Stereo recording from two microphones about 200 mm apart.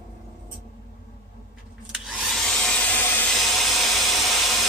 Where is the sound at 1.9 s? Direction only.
Centre (ahead or behind).